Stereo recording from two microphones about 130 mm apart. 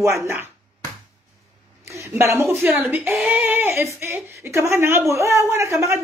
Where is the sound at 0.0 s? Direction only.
20° right (ahead or behind).